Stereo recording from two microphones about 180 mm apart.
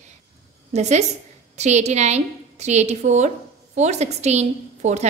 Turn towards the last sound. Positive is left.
turn(degrees=-40)  # may be behind; listen again after turning